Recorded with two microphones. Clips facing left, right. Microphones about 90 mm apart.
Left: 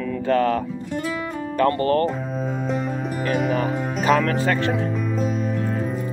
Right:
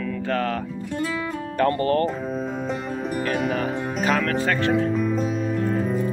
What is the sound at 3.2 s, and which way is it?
Speech, centre (ahead or behind).